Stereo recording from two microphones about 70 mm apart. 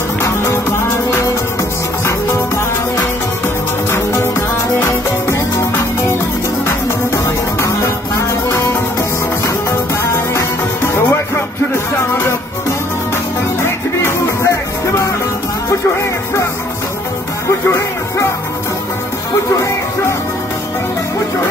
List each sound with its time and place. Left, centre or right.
0.2 s music: left
2.0 s music: left
7.2 s music: left
10.3 s music: left
13.6 s music: left
17.5 s music: left
19.5 s music: left